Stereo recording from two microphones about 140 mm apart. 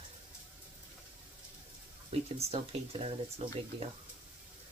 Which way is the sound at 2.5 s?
45° right (ahead or behind).